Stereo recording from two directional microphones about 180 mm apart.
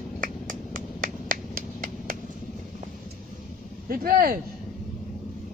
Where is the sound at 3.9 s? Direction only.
55° right (ahead or behind).